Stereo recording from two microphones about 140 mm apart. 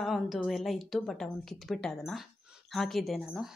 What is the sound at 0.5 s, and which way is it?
A woman's voice, centre (ahead or behind).